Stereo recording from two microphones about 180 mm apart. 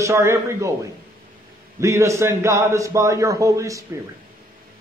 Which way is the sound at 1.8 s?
15° right (ahead or behind).